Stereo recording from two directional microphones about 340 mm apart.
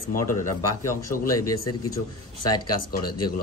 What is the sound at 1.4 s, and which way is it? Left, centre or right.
Speech, left.